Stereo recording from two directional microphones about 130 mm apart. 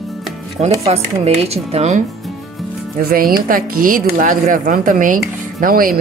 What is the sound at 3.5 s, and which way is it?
Speech, 90° right.